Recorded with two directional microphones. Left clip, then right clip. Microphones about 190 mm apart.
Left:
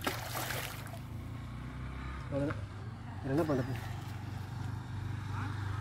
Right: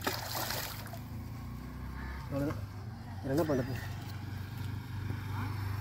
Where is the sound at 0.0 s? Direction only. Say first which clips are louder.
Right 1 dB; 5° left (ahead or behind).